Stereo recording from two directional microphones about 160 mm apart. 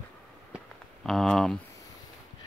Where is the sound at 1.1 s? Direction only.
Centre (ahead or behind).